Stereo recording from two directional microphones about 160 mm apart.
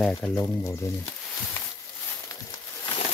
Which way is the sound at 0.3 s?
20° left (ahead or behind).